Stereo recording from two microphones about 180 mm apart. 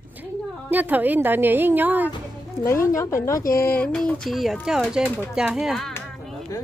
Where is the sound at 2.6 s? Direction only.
15° left (ahead or behind).